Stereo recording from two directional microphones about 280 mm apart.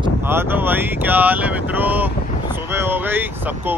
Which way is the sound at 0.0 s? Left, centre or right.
Centre.